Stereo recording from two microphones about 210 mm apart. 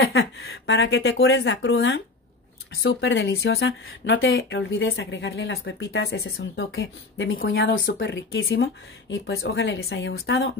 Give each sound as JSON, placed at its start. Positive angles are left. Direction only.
{"t": 0.2, "sound": "speech", "side_deg": 75}
{"t": 8.1, "sound": "speech", "side_deg": 65}
{"t": 9.1, "sound": "speech", "side_deg": 50}